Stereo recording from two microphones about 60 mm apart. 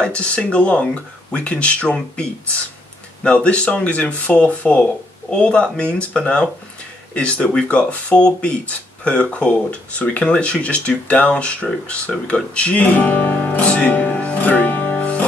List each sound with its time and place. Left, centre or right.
0.0 s speech: centre
12.5 s music: left